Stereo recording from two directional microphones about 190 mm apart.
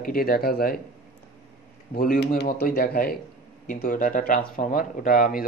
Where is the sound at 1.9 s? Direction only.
50° left (ahead or behind).